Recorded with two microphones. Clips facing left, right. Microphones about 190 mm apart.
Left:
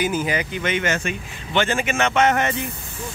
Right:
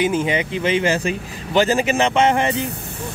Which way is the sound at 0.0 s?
25° right (ahead or behind).